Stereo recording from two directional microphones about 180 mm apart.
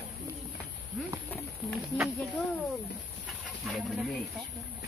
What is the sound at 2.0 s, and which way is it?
Speech, centre (ahead or behind).